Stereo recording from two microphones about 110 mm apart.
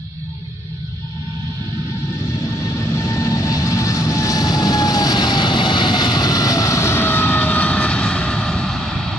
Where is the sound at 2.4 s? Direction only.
30° left (ahead or behind).